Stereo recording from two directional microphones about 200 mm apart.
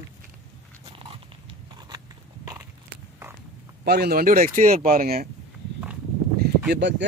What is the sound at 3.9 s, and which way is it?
Speech, 50° right (ahead or behind).